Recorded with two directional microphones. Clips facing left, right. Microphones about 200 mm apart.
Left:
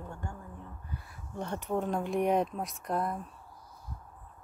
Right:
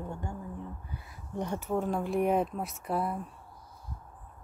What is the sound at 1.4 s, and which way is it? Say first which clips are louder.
Speech: right 1 dB; 10° right (ahead or behind).